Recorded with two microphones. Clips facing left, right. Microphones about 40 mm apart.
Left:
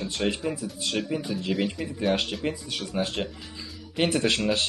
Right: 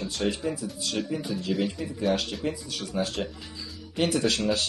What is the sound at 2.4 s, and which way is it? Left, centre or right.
Speech, left.